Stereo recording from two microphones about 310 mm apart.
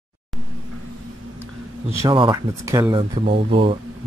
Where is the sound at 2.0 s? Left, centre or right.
Centre.